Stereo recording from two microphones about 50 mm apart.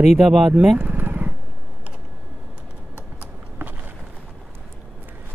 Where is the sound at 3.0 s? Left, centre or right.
Right.